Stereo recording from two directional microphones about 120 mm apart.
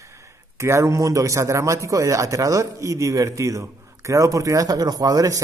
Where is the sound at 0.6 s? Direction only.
25° right (ahead or behind).